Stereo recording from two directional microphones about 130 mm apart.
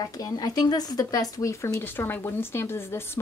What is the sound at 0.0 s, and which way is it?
Speech, 30° left (ahead or behind).